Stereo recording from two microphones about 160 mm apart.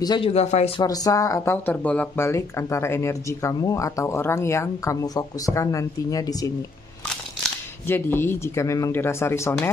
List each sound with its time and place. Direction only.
0.0 s speech: 25° left (ahead or behind)
0.3 s speech: 40° left (ahead or behind)
0.7 s speech: 25° left (ahead or behind)
7.8 s speech: 15° left (ahead or behind)